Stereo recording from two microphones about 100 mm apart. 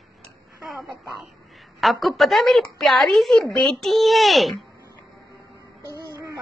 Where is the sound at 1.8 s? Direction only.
Centre (ahead or behind).